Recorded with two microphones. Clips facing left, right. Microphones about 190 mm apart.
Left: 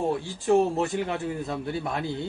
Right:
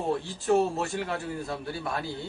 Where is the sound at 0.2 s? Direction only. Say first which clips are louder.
Left 3 dB; 15° left (ahead or behind).